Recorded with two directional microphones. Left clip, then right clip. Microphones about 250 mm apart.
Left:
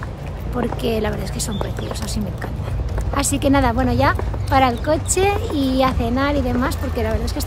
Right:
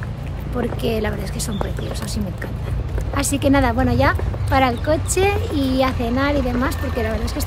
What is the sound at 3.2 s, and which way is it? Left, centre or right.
Speech, centre.